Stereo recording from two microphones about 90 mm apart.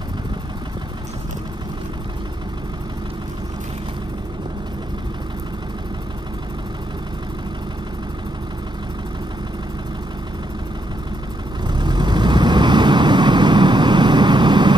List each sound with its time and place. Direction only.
11.6 s vehicle: 55° right (ahead or behind)